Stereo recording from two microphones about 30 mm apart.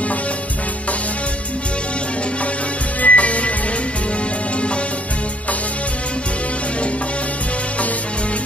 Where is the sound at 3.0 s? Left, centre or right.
Left.